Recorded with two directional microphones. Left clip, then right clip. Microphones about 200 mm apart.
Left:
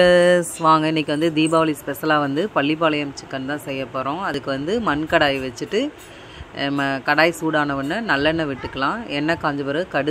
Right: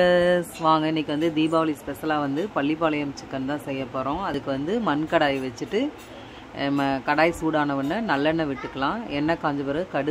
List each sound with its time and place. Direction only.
0.0 s speech: 15° left (ahead or behind)